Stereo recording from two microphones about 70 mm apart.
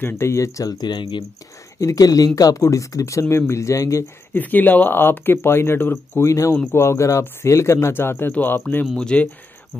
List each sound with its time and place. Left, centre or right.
0.0 s speech: left
0.7 s speech: left
1.8 s speech: left
4.3 s speech: left
6.2 s speech: left
6.5 s speech: left
8.9 s speech: centre